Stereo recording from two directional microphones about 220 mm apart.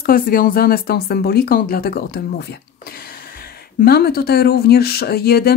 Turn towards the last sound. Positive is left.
turn(degrees=45)  # may be behind; listen again after turning